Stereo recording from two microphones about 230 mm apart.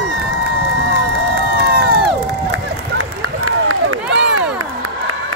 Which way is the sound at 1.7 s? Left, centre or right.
Right.